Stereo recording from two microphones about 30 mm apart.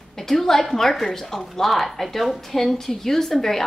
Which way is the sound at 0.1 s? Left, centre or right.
Centre.